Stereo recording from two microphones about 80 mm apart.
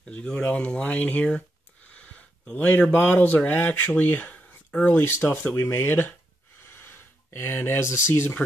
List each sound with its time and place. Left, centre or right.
0.0 s speech: centre; by 8.4 s left